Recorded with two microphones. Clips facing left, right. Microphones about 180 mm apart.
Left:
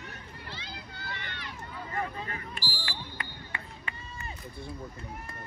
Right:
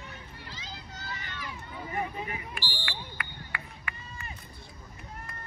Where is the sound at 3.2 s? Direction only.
20° left (ahead or behind).